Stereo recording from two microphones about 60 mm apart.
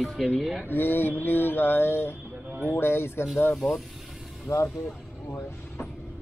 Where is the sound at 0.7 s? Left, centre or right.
Left.